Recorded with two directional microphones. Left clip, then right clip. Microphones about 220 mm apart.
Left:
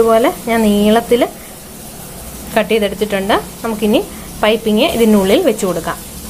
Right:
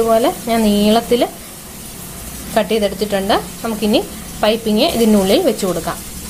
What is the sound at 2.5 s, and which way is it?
Speech, centre (ahead or behind).